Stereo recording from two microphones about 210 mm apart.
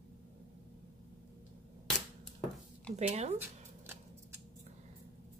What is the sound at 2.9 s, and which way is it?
Speech, 30° right (ahead or behind).